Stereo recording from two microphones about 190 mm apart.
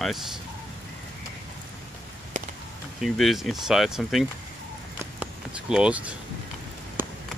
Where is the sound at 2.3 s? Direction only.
40° right (ahead or behind).